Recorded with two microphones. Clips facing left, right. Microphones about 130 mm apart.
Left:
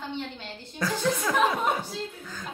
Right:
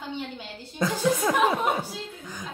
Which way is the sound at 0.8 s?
20° right (ahead or behind).